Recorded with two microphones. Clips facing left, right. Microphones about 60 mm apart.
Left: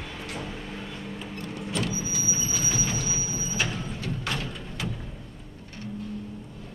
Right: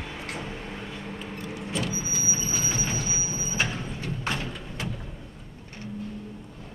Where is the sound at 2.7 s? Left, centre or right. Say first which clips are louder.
Even; right.